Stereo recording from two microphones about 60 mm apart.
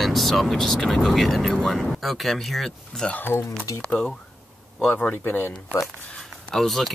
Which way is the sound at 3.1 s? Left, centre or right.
Left.